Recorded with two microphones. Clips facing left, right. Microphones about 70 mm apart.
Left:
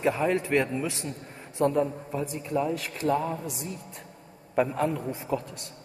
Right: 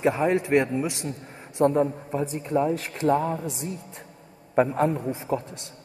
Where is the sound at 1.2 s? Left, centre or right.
Centre.